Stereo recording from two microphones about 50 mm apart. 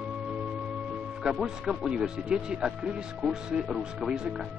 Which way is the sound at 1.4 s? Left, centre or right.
Centre.